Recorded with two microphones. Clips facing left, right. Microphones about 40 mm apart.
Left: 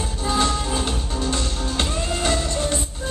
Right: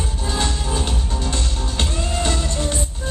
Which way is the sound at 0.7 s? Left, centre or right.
Centre.